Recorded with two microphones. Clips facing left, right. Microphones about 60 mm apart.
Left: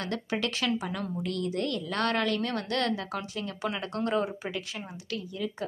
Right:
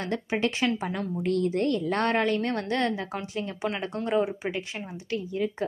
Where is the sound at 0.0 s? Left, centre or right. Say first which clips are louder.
Right 4 dB; right.